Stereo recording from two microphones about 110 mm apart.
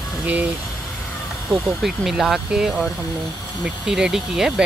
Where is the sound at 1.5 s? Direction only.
Centre (ahead or behind).